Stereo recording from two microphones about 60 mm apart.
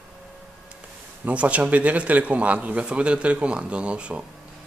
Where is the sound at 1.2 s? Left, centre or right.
Right.